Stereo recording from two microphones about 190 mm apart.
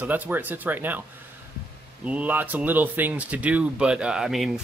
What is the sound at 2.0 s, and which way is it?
Speech, 5° right (ahead or behind).